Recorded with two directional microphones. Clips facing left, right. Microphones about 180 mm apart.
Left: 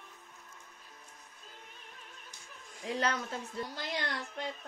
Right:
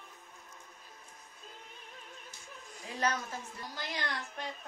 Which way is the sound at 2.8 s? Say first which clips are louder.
Left 1 dB; 70° left (ahead or behind).